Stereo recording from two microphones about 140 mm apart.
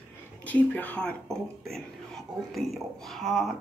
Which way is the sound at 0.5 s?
10° left (ahead or behind).